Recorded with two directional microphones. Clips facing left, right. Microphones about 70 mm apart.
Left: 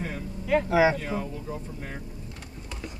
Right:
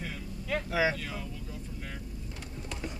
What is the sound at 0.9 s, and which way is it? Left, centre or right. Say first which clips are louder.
Speech: left 8 dB; left.